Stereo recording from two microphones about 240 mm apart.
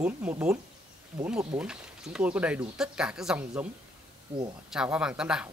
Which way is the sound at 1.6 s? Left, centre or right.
Centre.